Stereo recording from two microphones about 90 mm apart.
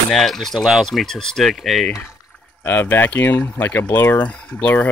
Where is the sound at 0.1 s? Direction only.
5° left (ahead or behind).